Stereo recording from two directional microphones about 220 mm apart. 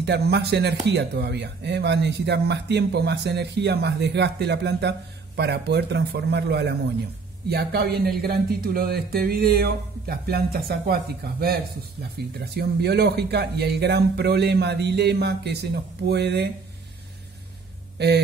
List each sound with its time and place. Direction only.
0.0 s speech: 50° right (ahead or behind)
17.9 s speech: 50° right (ahead or behind)